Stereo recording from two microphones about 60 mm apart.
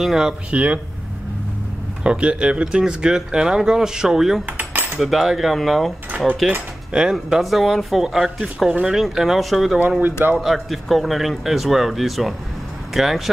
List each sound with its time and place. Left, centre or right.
0.0 s a man's voice: centre
0.5 s speech: right
2.0 s a man's voice: centre
6.9 s speech: centre
7.4 s a man's voice: centre
9.8 s speech: right
10.4 s a man's voice: centre